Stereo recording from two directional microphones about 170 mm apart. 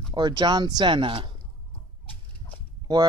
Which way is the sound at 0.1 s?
25° right (ahead or behind).